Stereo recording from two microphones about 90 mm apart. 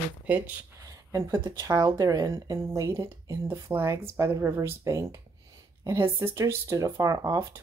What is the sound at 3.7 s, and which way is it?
Speech, 25° right (ahead or behind).